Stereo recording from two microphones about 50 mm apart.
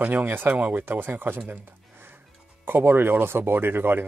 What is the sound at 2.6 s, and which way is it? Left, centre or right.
Speech, right.